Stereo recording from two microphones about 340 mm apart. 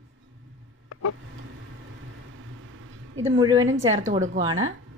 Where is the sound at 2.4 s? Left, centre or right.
Right.